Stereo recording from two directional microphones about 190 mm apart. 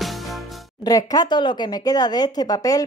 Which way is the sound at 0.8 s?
20° left (ahead or behind).